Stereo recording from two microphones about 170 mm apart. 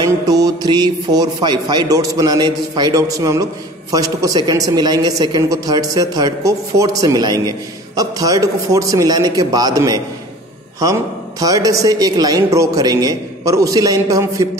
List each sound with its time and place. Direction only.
0.0 s a woman's voice: 20° right (ahead or behind)